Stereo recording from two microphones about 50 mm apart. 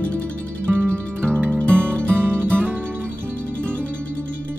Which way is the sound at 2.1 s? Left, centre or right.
Right.